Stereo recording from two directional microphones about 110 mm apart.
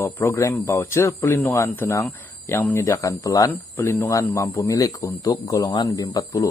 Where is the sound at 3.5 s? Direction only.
20° left (ahead or behind).